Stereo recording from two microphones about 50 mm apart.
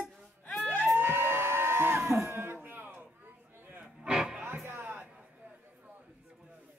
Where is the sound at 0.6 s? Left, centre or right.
Left.